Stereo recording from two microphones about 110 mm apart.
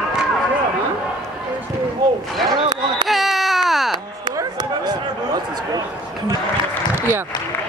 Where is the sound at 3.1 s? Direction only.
Centre (ahead or behind).